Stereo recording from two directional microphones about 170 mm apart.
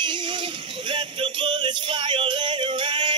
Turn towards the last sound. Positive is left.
turn(degrees=-25)  # may be behind; listen again after turning